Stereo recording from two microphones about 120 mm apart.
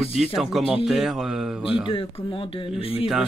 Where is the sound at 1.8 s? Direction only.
50° left (ahead or behind).